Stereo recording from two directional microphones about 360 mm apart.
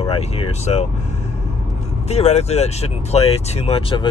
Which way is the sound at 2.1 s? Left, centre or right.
Centre.